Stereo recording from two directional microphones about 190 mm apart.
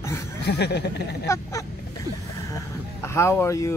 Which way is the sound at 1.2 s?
15° left (ahead or behind).